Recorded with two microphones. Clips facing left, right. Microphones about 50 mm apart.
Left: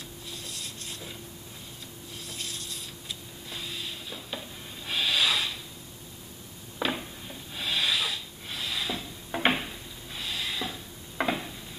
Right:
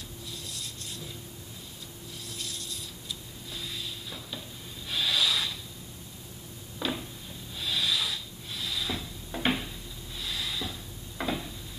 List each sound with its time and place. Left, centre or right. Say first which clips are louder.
3.5 s a sound: left 1 dB; left
6.8 s rub: left 3 dB; left
9.3 s drawer open or close: left 3 dB; left